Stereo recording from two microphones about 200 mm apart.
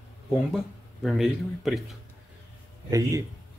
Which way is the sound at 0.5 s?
Centre (ahead or behind).